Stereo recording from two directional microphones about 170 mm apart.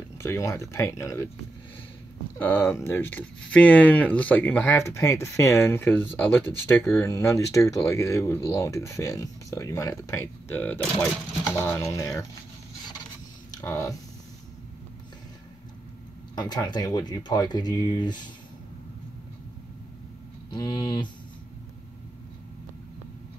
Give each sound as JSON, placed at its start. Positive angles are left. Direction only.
{"t": 0.2, "sound": "speech", "side_deg": 15}
{"t": 2.3, "sound": "speech", "side_deg": 15}
{"t": 13.6, "sound": "speech", "side_deg": 20}
{"t": 16.3, "sound": "speech", "side_deg": 25}
{"t": 20.5, "sound": "speech", "side_deg": 25}